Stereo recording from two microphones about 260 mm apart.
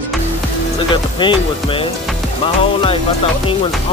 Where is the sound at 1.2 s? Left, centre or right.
Centre.